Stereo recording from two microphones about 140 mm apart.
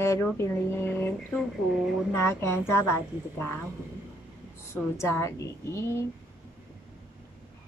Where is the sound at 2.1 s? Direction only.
20° left (ahead or behind).